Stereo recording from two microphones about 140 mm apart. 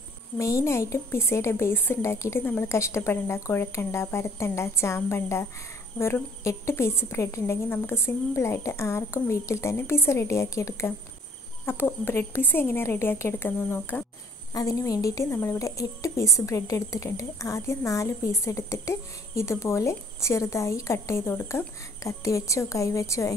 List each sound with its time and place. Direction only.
0.4 s a woman's voice: 20° left (ahead or behind)
14.5 s a woman's voice: 25° left (ahead or behind)